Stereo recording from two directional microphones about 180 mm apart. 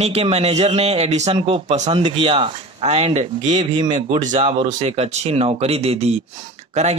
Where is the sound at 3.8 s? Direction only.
25° right (ahead or behind).